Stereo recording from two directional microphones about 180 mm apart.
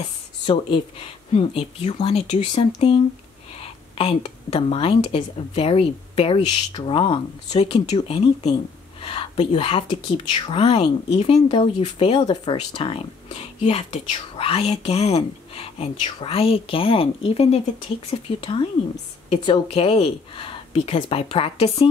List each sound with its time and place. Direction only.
1.3 s speech: 35° left (ahead or behind)
4.0 s speech: 35° left (ahead or behind)